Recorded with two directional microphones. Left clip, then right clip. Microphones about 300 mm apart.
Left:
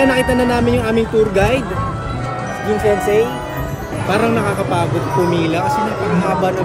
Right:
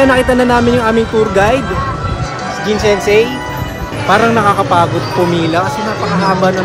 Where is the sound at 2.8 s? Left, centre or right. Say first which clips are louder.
Right 4 dB; right.